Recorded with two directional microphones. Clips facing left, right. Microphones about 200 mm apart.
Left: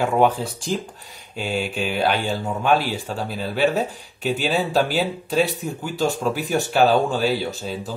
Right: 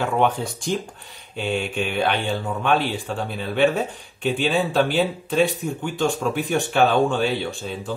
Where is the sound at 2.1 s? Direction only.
40° left (ahead or behind).